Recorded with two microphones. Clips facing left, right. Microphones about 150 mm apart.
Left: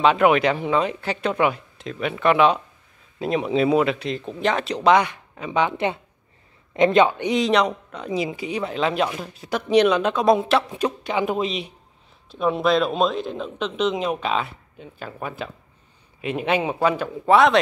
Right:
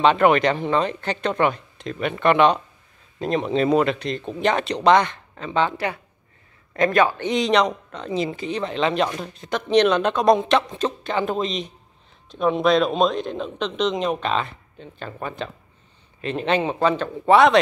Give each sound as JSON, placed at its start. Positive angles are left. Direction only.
{"t": 0.0, "sound": "a man's voice", "side_deg": 5}
{"t": 7.2, "sound": "speech", "side_deg": 5}